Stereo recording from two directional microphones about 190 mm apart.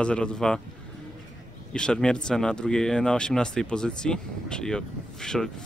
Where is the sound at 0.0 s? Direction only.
5° left (ahead or behind).